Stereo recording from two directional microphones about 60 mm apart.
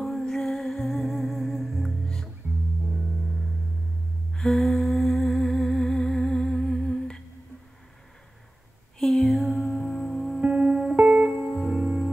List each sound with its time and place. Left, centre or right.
0.0 s music: centre
2.4 s music: right
4.3 s humming: centre
9.0 s music: centre
10.4 s music: centre
11.6 s music: centre